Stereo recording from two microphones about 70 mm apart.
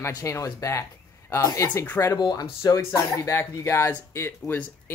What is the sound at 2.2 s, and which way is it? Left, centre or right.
Speech, left.